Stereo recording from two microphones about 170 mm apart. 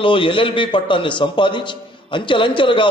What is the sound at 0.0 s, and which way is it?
A man's voice, 30° left (ahead or behind).